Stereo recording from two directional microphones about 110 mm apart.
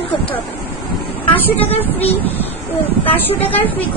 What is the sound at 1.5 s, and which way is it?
Speech, 60° left (ahead or behind).